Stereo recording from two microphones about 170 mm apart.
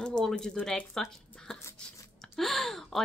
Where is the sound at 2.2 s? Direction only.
Centre (ahead or behind).